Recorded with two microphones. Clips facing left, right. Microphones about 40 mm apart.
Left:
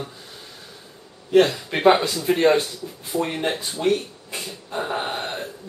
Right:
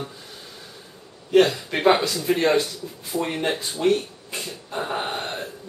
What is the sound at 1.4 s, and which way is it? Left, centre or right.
Speech, centre.